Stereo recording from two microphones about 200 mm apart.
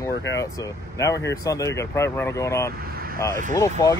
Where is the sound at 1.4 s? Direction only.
15° left (ahead or behind).